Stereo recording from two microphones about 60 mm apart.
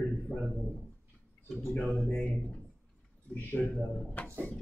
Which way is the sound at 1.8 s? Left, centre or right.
Left.